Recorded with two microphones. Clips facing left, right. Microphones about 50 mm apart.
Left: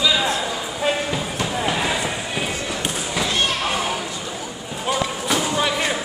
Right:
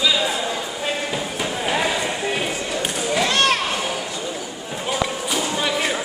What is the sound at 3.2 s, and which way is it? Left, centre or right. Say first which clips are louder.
Children playing: right 4 dB; right.